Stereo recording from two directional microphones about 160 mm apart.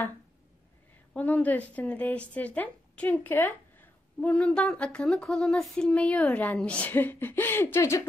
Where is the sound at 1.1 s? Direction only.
10° left (ahead or behind).